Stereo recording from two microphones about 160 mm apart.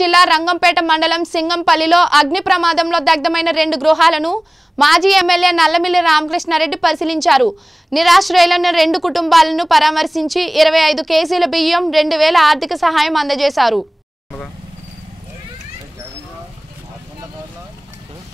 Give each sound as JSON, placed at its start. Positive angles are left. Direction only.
{"t": 0.0, "sound": "speech", "side_deg": 0}